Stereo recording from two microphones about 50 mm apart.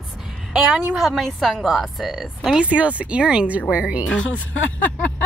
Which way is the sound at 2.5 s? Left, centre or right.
Right.